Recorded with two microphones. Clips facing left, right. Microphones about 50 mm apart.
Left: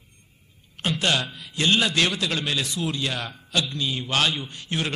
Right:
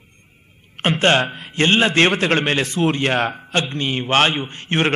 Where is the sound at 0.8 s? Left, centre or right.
Right.